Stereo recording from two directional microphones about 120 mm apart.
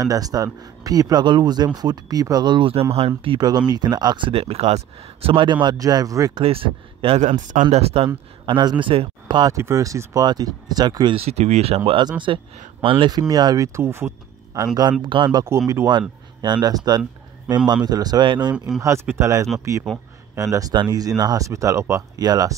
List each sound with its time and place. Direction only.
0.0 s speech: 30° right (ahead or behind); by 3.1 s 55° right (ahead or behind)
3.3 s speech: 35° right (ahead or behind)
4.3 s speech: 55° right (ahead or behind); by 6.4 s 30° right (ahead or behind)
6.4 s speech: 50° right (ahead or behind)
7.2 s speech: 90° right
7.7 s speech: 55° right (ahead or behind)
8.5 s speech: 40° right (ahead or behind)
9.4 s speech: 25° right (ahead or behind)
11.1 s speech: 60° right (ahead or behind)
13.3 s speech: 35° right (ahead or behind)
15.4 s speech: 25° right (ahead or behind)
18.8 s speech: 25° right (ahead or behind)